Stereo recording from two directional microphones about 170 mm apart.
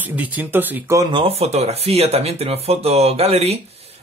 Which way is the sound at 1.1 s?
35° right (ahead or behind).